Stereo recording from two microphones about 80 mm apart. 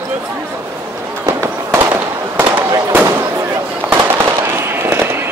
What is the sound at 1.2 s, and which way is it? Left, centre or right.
Fireworks, right.